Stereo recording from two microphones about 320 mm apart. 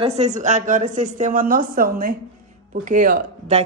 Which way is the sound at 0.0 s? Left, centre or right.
Centre.